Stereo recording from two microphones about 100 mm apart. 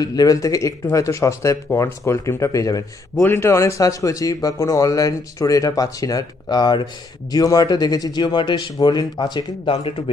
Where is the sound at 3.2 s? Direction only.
25° left (ahead or behind); by 9.7 s 50° left (ahead or behind).